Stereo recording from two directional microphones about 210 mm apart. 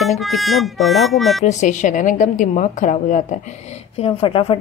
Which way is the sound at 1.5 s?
35° left (ahead or behind).